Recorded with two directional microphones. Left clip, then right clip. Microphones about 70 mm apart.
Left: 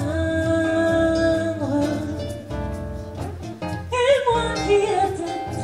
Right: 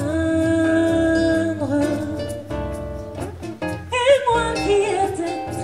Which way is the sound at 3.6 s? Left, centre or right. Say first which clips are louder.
Right 2 dB; right.